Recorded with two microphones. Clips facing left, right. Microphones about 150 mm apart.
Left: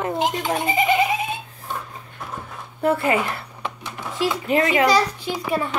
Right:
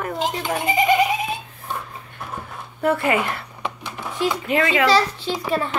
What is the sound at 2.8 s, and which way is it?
Music, 30° left (ahead or behind).